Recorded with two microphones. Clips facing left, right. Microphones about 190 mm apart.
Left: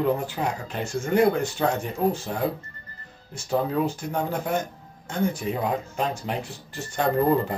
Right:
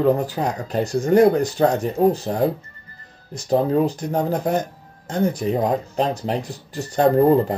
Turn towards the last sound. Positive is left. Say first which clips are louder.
# right 7 dB
turn(degrees=-35)  # may be behind; listen again after turning